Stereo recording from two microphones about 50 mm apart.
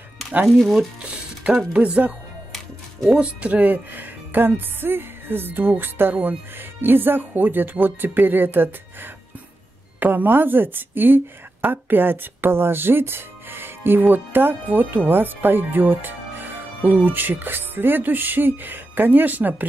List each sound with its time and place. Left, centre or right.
0.6 s speech: centre
1.5 s a woman's voice: right